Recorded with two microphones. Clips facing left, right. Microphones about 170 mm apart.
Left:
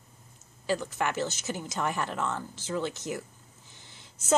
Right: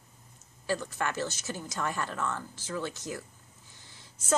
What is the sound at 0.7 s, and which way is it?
A woman's voice, 15° left (ahead or behind).